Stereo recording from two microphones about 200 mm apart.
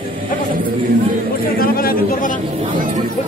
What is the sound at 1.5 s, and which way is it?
Speech, 45° left (ahead or behind).